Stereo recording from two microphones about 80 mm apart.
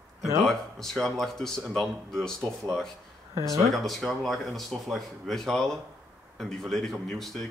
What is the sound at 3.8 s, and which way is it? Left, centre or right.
Speech, centre.